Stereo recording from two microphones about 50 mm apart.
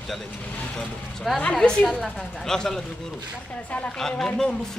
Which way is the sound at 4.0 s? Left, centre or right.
Centre.